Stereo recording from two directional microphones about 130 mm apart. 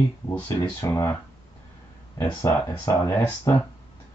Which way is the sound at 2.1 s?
25° left (ahead or behind).